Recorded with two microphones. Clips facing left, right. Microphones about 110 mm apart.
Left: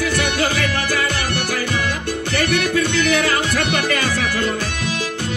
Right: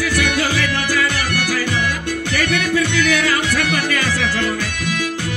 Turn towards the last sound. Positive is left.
turn(degrees=25)  # may be behind; listen again after turning